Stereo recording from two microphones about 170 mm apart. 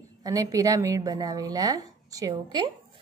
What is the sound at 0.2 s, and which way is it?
A woman's voice, 20° right (ahead or behind).